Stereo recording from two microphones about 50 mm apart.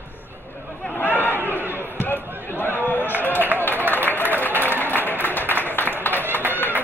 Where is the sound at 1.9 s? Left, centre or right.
Left.